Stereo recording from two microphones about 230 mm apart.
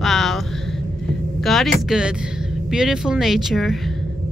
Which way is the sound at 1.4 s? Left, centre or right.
Centre.